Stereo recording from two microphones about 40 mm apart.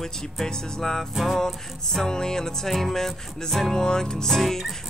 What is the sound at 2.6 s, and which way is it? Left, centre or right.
Music, centre.